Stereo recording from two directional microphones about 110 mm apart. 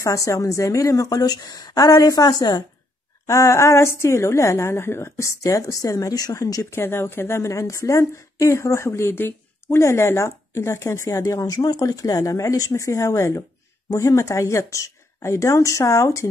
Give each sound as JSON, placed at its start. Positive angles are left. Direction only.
{"t": 0.0, "sound": "a woman's voice", "side_deg": 30}